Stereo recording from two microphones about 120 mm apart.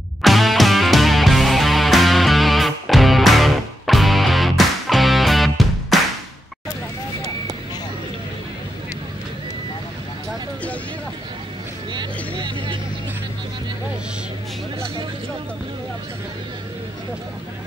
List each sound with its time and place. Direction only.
0.2 s music: centre (ahead or behind)
11.9 s vehicle: 40° right (ahead or behind)